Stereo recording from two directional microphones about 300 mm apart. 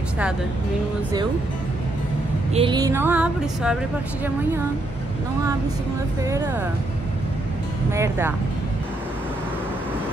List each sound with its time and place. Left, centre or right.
2.5 s music: centre
6.2 s music: centre
7.9 s music: centre